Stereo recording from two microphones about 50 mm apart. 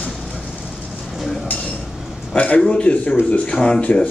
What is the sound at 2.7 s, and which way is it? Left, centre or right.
Speech, left.